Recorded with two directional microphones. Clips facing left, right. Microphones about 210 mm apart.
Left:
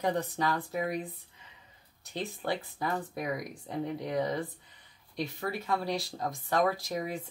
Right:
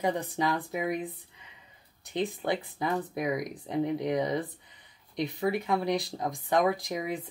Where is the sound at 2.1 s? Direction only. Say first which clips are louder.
Right 4 dB; 15° right (ahead or behind).